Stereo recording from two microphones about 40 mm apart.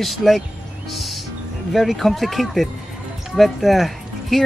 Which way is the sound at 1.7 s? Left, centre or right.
Centre.